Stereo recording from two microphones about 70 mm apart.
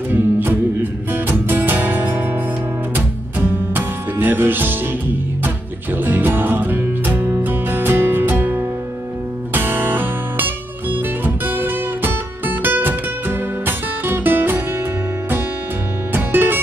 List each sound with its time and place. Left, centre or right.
0.1 s music: right
3.3 s music: right
6.0 s music: right
16.1 s music: right